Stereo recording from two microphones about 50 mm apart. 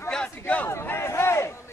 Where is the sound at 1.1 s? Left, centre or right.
Left.